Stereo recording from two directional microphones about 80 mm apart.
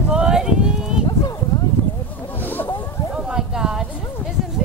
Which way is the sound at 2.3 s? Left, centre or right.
Left.